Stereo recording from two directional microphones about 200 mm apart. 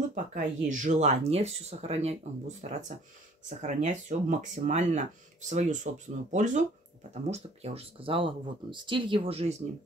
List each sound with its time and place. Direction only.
0.1 s speech: 40° right (ahead or behind)